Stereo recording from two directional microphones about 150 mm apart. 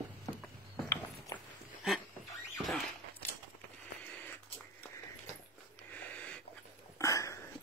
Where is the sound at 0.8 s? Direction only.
20° left (ahead or behind).